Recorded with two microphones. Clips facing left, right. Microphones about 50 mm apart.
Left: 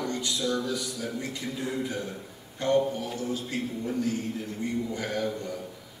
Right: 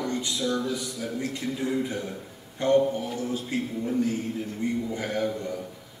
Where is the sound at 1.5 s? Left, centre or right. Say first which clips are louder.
Right 3 dB; centre.